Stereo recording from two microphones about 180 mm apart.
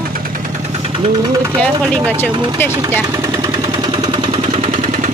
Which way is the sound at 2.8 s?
20° right (ahead or behind).